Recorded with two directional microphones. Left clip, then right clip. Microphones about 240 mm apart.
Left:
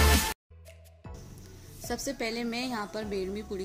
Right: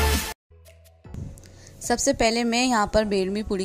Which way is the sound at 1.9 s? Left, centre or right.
Right.